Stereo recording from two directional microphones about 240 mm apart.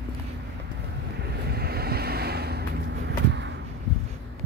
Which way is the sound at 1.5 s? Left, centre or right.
Right.